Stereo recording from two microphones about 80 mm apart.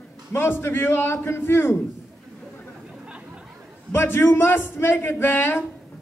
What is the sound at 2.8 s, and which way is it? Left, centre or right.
Chatter, centre.